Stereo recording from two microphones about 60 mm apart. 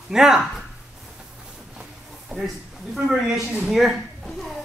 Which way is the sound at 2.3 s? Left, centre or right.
Centre.